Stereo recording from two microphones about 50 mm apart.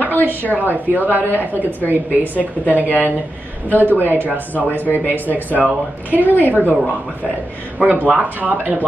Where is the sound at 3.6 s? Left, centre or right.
Right.